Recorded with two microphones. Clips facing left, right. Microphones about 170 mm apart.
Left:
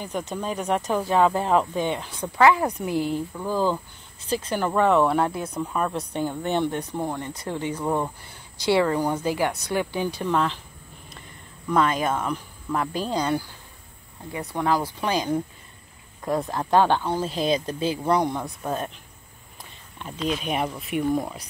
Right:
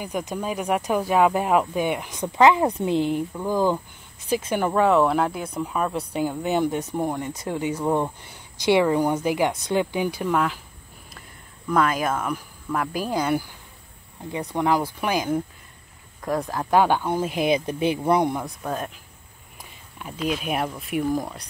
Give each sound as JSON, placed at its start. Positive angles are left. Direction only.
{"t": 0.0, "sound": "speech", "side_deg": -10}
{"t": 4.7, "sound": "speech", "side_deg": 0}
{"t": 11.7, "sound": "speech", "side_deg": -5}
{"t": 16.3, "sound": "speech", "side_deg": 0}
{"t": 16.7, "sound": "speech", "side_deg": -10}
{"t": 18.4, "sound": "speech", "side_deg": 0}
{"t": 20.0, "sound": "speech", "side_deg": -5}